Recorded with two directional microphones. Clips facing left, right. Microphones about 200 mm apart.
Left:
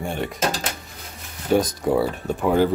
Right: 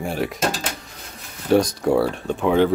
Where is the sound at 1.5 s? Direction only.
Centre (ahead or behind).